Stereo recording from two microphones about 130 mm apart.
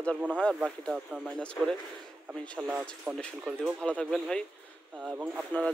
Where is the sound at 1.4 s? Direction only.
5° left (ahead or behind).